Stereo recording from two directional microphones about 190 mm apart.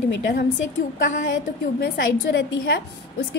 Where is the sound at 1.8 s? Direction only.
65° left (ahead or behind).